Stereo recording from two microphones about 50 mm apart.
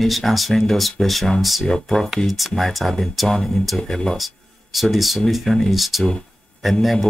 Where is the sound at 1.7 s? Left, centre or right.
Centre.